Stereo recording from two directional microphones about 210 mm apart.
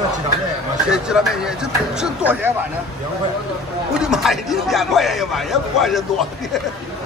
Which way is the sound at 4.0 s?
Centre (ahead or behind).